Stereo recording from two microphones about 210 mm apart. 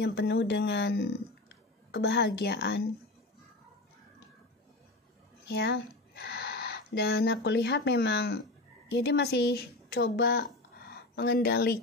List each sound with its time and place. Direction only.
0.0 s speech: 55° left (ahead or behind)
5.5 s speech: 50° left (ahead or behind)